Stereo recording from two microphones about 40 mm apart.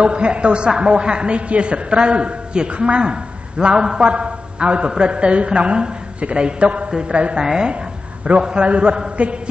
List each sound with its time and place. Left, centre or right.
0.0 s a man's voice: right
7.4 s a woman's voice: centre
8.4 s a man's voice: right